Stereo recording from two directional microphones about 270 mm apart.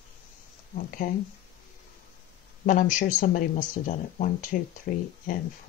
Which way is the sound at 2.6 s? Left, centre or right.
Left.